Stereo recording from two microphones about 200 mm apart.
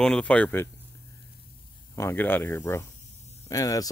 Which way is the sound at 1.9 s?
10° left (ahead or behind).